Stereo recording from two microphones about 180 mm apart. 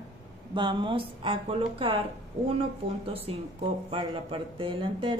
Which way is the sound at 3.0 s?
30° right (ahead or behind).